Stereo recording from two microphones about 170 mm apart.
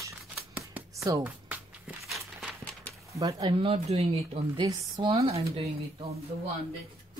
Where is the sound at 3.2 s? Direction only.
25° right (ahead or behind).